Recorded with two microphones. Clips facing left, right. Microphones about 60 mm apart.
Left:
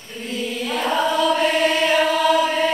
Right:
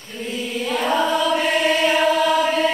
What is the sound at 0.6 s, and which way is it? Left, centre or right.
Choir, centre.